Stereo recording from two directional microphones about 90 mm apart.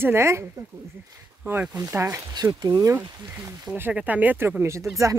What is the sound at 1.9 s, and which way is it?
Speech, 30° right (ahead or behind).